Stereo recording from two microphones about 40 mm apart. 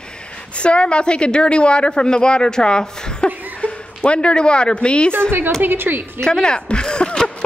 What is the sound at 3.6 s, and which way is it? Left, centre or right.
Speech, left.